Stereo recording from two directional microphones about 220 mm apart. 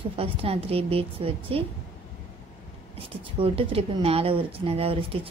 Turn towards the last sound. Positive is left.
turn(degrees=-25)  # may be behind; listen again after turning